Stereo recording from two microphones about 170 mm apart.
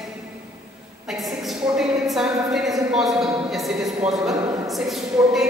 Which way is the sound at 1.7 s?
Centre (ahead or behind).